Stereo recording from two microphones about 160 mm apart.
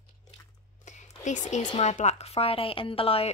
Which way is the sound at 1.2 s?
50° left (ahead or behind).